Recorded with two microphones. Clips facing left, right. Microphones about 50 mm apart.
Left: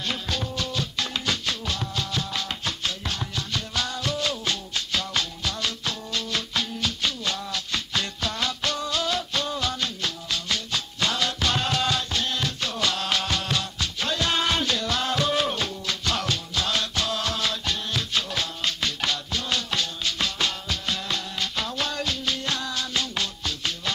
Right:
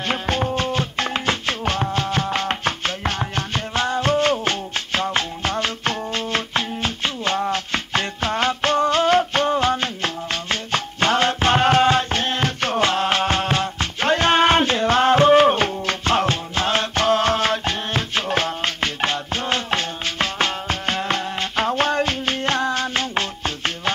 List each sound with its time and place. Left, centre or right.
0.1 s music: right